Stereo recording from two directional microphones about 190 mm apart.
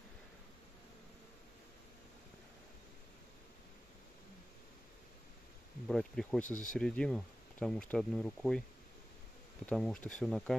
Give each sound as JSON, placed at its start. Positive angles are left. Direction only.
{"t": 5.9, "sound": "speech", "side_deg": 0}
{"t": 6.4, "sound": "speech", "side_deg": 45}
{"t": 6.7, "sound": "speech", "side_deg": 5}
{"t": 9.7, "sound": "speech", "side_deg": 5}